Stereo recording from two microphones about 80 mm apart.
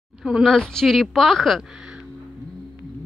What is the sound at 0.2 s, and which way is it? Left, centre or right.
Speech, centre.